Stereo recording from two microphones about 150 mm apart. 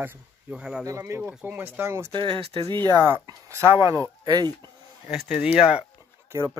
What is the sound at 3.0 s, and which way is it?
Speech, 15° right (ahead or behind).